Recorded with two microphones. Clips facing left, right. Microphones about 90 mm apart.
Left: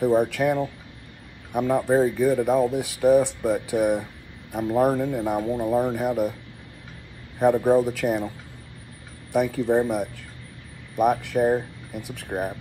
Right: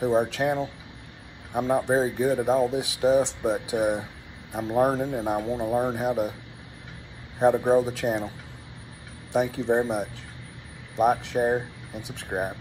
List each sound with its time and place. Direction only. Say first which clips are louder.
0.0 s speech: left 3 dB; 20° right (ahead or behind)
7.3 s speech: left 1 dB; 20° right (ahead or behind)
9.3 s speech: left 2 dB; 20° right (ahead or behind)